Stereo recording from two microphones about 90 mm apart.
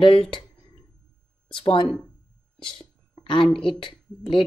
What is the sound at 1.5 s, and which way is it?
Speech, 75° left (ahead or behind).